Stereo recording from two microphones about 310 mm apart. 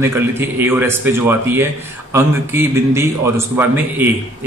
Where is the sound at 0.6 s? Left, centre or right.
Centre.